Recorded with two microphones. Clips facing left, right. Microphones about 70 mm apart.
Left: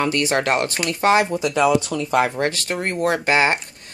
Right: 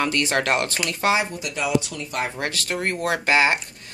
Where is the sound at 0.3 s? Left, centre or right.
Left.